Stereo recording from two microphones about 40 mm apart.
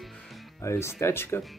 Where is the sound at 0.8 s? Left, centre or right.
Left.